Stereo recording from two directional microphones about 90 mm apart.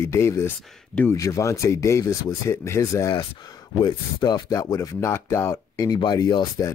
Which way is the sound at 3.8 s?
50° left (ahead or behind).